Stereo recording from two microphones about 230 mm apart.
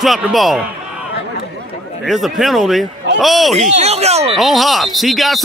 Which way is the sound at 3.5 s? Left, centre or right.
Right.